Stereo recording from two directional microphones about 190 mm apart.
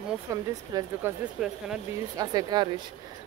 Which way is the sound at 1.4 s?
Centre (ahead or behind).